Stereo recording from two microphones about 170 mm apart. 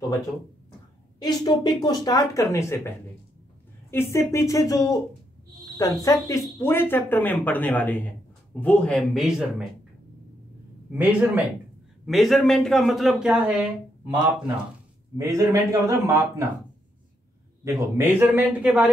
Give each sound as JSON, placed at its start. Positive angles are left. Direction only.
{"t": 1.2, "sound": "speech", "side_deg": 25}
{"t": 3.9, "sound": "speech", "side_deg": 15}
{"t": 11.0, "sound": "a man's voice", "side_deg": -10}
{"t": 15.1, "sound": "a man's voice", "side_deg": -20}
{"t": 17.6, "sound": "a man's voice", "side_deg": -15}